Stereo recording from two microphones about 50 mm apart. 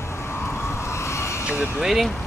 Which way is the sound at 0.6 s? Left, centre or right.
Left.